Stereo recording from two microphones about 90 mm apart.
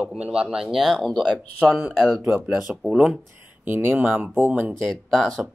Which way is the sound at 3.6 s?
25° right (ahead or behind).